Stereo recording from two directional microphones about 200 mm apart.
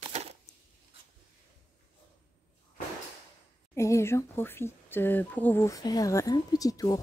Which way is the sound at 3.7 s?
15° left (ahead or behind).